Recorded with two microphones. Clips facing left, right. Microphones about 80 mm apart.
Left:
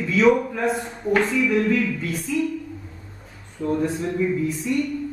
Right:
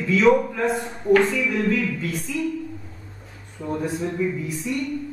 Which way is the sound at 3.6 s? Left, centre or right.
Centre.